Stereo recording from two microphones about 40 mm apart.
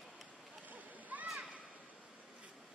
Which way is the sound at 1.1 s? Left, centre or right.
Right.